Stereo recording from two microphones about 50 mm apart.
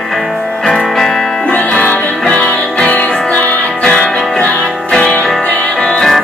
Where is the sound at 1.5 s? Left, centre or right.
Left.